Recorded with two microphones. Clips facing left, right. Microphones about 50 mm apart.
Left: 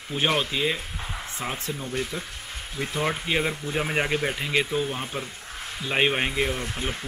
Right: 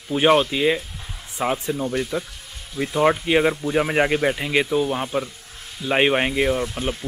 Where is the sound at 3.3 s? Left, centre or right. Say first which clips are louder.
Right 7 dB; centre.